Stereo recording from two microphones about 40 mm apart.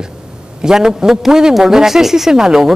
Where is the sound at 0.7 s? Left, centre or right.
Centre.